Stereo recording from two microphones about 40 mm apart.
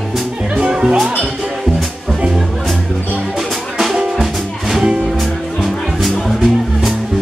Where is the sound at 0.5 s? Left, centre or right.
Centre.